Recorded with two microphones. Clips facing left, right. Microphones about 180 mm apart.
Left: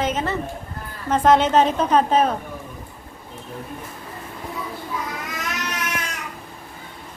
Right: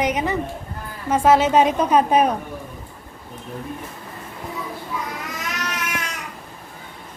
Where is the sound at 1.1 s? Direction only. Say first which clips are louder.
Even; 10° right (ahead or behind).